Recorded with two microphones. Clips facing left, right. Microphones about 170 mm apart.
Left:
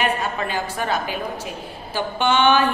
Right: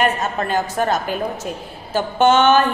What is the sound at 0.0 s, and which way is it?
A woman's voice, 45° right (ahead or behind).